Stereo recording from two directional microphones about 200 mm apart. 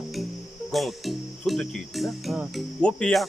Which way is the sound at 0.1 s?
Centre (ahead or behind).